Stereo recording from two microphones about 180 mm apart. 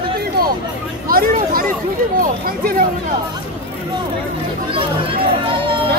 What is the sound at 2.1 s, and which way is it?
Speech, 55° right (ahead or behind).